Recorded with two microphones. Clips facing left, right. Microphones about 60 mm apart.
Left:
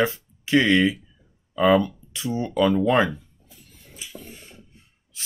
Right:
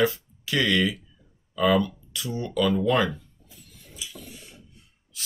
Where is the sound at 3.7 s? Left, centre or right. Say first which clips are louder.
Left 1 dB; left.